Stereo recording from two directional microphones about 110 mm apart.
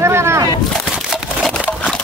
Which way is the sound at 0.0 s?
25° right (ahead or behind).